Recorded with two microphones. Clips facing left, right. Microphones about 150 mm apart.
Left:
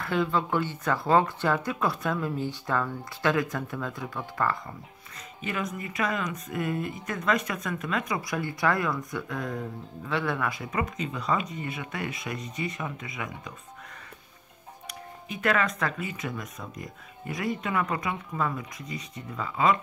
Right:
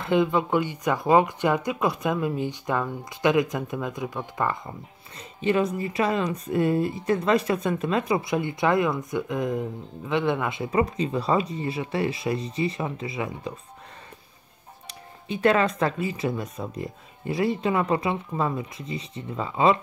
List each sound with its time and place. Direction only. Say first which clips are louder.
0.0 s speech: right 5 dB; 20° right (ahead or behind)
5.4 s speech: right 9 dB; 30° right (ahead or behind)
14.9 s speech: right 6 dB; 30° right (ahead or behind)